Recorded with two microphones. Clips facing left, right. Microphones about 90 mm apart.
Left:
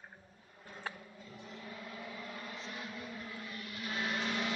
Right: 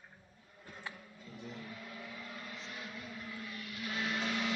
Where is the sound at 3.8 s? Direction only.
15° left (ahead or behind).